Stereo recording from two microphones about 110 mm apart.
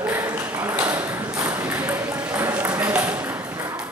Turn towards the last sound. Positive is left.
turn(degrees=-10)  # may be behind; listen again after turning